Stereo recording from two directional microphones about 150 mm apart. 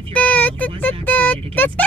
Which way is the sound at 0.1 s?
10° left (ahead or behind).